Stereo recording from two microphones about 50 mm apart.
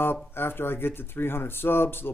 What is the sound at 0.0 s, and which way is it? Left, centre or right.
Speech, left.